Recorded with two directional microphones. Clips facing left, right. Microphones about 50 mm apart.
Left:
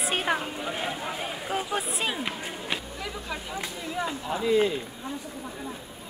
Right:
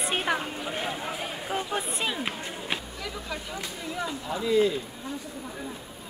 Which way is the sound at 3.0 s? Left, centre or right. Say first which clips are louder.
Left 1 dB; centre.